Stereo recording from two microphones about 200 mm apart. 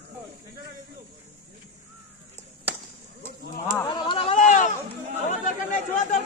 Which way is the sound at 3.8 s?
25° left (ahead or behind).